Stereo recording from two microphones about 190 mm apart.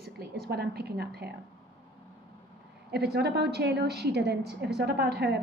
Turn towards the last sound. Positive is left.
turn(degrees=-60)  # may be behind; listen again after turning